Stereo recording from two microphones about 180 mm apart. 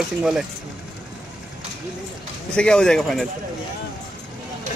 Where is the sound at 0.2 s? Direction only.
5° right (ahead or behind).